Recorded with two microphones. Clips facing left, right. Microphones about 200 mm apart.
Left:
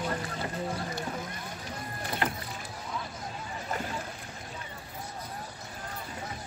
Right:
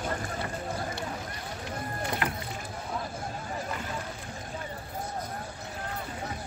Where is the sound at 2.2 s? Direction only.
30° left (ahead or behind).